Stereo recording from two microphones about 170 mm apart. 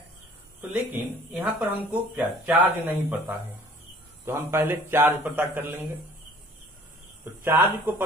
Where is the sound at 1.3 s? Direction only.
10° right (ahead or behind).